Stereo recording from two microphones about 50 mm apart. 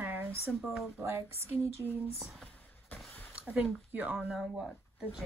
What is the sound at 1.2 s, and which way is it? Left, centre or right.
Speech, right.